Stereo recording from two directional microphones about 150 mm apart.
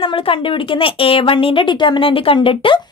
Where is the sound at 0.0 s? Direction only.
40° left (ahead or behind).